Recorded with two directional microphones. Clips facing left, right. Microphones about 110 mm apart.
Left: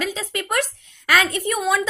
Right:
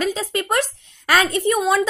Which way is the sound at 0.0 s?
35° right (ahead or behind).